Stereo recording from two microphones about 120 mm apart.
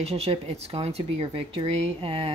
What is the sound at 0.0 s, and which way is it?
Speech, 60° right (ahead or behind).